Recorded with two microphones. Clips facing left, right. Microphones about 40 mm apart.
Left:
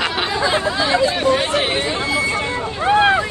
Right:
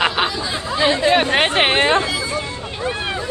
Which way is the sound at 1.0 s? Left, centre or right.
Right.